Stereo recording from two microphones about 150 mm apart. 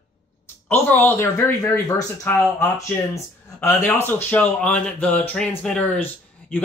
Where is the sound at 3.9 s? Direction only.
15° left (ahead or behind).